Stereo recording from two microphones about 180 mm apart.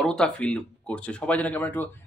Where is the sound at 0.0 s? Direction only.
5° left (ahead or behind).